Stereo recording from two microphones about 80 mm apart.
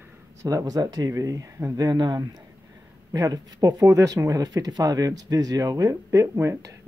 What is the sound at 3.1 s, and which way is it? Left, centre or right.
Speech, right.